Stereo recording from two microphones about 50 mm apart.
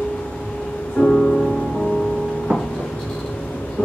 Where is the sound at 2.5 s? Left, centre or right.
Right.